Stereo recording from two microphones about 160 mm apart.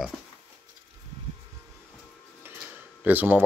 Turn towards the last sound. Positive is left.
turn(degrees=-10)  # may be behind; listen again after turning